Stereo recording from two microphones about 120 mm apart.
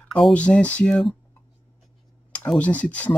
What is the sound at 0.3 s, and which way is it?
Speech, 10° left (ahead or behind).